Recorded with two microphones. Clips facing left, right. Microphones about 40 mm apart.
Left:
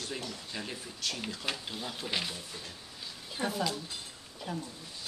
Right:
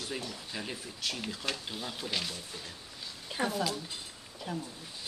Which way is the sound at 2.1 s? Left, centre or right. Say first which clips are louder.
Left 1 dB; centre.